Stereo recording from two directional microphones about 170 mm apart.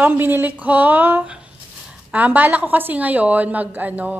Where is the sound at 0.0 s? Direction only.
10° right (ahead or behind).